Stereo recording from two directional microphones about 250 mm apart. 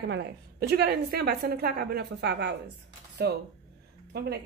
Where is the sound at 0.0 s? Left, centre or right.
Right.